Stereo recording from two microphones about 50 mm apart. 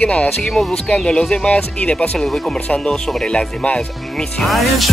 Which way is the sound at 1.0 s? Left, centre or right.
Centre.